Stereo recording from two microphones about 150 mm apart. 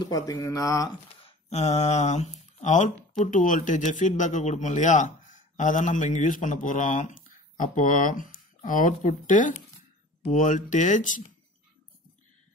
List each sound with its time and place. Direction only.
0.0 s speech: 25° left (ahead or behind)
1.2 s speech: 45° left (ahead or behind)